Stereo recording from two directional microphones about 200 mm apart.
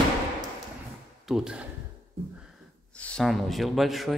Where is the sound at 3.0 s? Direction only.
5° left (ahead or behind).